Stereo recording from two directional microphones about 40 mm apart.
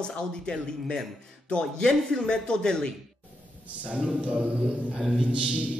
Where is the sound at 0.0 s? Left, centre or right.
Centre.